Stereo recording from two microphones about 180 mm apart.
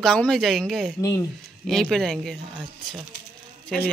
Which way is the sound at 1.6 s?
5° left (ahead or behind).